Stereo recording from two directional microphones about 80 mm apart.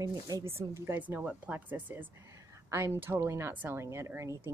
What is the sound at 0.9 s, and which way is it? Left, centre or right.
A woman's voice, right.